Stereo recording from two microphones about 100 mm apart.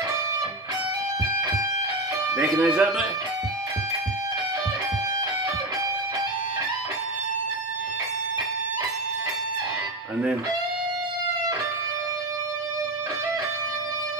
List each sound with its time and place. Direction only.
2.3 s speech: 15° right (ahead or behind)